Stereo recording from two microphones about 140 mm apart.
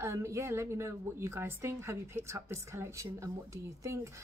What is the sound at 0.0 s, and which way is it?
A woman's voice, 20° right (ahead or behind).